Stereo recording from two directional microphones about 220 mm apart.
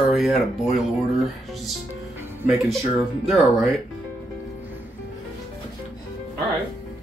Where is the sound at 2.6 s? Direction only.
Centre (ahead or behind).